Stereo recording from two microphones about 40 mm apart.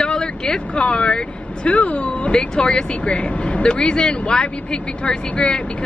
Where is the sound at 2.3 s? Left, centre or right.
Left.